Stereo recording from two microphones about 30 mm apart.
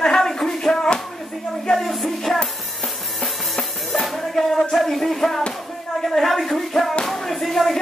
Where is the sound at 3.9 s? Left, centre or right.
Centre.